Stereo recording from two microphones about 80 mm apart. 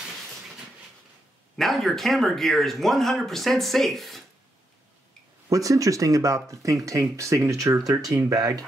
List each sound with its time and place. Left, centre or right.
1.6 s speech: centre
5.5 s speech: right